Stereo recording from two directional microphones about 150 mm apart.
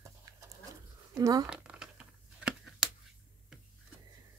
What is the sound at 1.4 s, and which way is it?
Crumpling, 5° right (ahead or behind).